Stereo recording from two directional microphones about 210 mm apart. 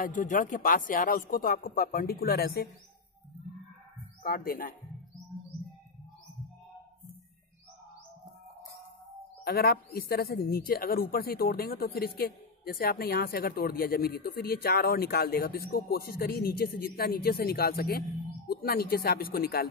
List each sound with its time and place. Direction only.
0.0 s speech: 40° left (ahead or behind)
4.2 s a woman's voice: 45° left (ahead or behind)
9.4 s a woman's voice: 50° left (ahead or behind)